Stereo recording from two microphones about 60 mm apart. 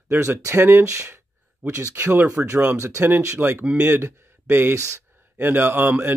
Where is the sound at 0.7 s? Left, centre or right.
Right.